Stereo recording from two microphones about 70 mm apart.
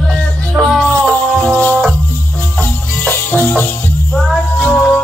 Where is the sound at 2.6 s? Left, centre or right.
Left.